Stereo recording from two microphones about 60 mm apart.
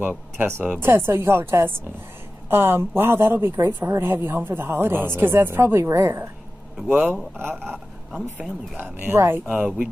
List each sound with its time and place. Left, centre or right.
0.4 s a woman's voice: right
7.5 s speech: centre
8.1 s speech: right
9.1 s a woman's voice: right
9.5 s speech: centre